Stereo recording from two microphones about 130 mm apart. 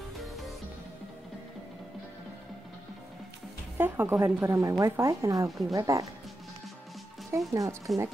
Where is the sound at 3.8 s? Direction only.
15° right (ahead or behind).